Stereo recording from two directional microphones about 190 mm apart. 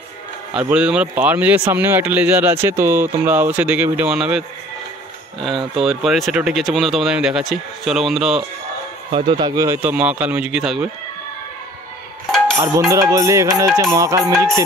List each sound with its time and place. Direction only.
0.6 s speech: 5° right (ahead or behind)
5.8 s speech: centre (ahead or behind)
9.1 s speech: 25° right (ahead or behind); by 10.9 s 5° right (ahead or behind)
12.5 s speech: 15° right (ahead or behind)